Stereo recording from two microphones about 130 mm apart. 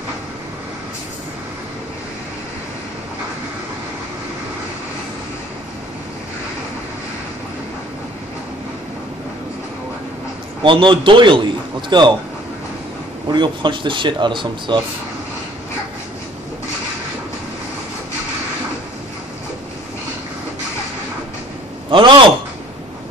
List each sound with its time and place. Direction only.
10.6 s speech: 40° right (ahead or behind)
13.3 s speech: 35° right (ahead or behind)
21.9 s speech: 40° right (ahead or behind)